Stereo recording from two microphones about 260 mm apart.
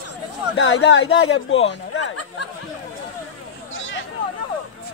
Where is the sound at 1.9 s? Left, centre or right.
Left.